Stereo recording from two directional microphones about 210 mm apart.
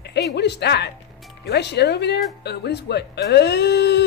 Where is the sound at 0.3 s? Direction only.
55° left (ahead or behind).